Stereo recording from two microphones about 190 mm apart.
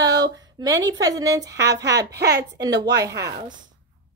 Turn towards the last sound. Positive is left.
turn(degrees=-15)  # may be behind; listen again after turning